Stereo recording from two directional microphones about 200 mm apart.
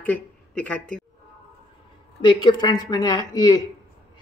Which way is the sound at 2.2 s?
25° left (ahead or behind).